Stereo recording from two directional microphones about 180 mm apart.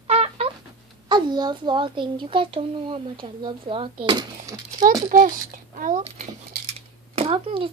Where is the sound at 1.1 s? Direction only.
25° right (ahead or behind).